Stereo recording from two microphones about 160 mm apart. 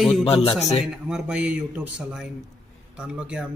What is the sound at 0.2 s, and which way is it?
Speech, 35° left (ahead or behind).